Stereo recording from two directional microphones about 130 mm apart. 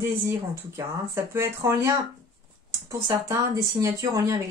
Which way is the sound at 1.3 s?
20° right (ahead or behind).